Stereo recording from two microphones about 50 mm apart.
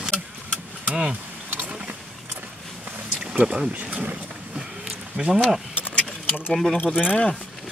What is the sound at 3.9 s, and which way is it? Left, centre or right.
Speech, right.